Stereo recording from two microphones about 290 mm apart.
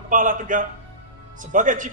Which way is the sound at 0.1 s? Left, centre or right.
Right.